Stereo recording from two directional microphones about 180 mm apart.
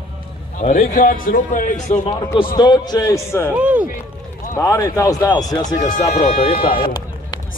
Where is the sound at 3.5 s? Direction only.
10° right (ahead or behind).